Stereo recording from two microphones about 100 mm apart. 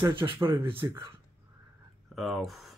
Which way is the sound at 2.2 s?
Centre (ahead or behind).